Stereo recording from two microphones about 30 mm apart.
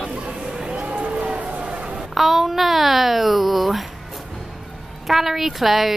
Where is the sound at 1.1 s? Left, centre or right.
Right.